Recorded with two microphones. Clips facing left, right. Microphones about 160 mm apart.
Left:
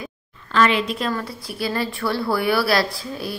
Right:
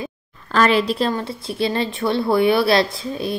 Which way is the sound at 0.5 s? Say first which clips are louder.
Right 2 dB; 40° right (ahead or behind).